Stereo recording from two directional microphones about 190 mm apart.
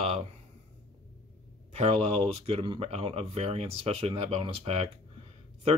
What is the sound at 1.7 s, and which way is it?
Speech, 35° right (ahead or behind).